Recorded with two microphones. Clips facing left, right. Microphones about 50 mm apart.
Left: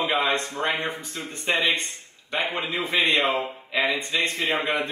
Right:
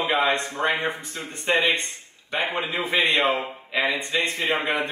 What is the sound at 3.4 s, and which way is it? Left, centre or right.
Speech, centre.